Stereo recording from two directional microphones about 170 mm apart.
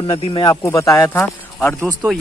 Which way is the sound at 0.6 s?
15° left (ahead or behind).